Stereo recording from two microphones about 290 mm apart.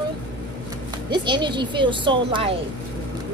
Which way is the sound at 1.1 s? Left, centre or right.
Centre.